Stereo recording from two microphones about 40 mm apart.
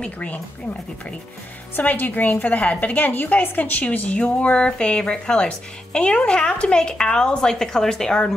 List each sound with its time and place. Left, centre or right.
0.0 s speech: left
1.8 s a woman's voice: left
4.2 s speech: left